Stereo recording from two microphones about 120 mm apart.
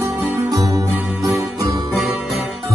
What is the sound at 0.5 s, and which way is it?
Music, 30° right (ahead or behind).